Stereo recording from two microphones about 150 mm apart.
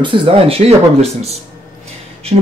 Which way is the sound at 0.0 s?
35° right (ahead or behind).